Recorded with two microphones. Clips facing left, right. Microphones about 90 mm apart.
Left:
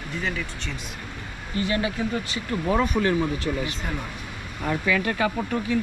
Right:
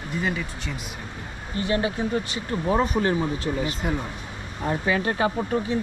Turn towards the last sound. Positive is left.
turn(degrees=-20)  # may be behind; listen again after turning